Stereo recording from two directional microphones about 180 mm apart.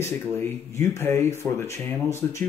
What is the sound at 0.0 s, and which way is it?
Speech, 15° left (ahead or behind).